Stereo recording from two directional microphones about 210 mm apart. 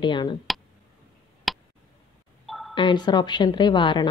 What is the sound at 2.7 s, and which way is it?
A woman's voice, 20° left (ahead or behind).